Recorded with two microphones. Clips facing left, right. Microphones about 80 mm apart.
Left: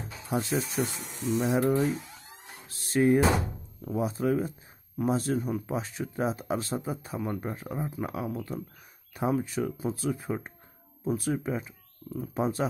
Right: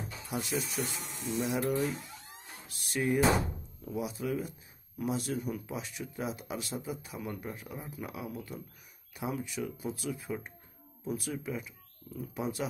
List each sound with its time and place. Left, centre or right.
0.3 s speech: left